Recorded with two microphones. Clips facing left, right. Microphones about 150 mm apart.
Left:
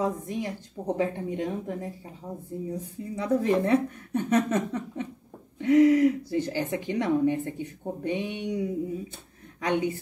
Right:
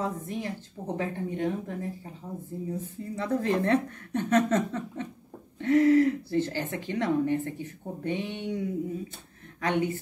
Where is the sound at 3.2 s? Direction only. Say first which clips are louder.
Left 3 dB; 10° left (ahead or behind).